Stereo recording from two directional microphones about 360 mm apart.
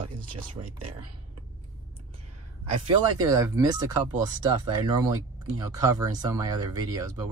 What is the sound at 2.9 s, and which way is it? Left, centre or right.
Speech, centre.